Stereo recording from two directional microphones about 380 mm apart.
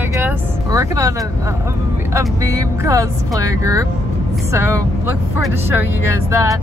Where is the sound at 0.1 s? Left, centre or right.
Centre.